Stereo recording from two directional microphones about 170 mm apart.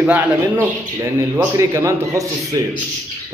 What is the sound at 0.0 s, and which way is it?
A man's voice, 10° right (ahead or behind).